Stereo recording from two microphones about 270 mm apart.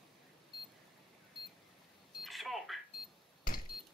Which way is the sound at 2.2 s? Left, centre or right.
Centre.